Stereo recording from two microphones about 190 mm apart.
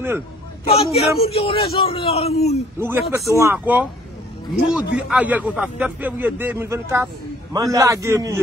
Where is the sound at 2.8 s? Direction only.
10° right (ahead or behind).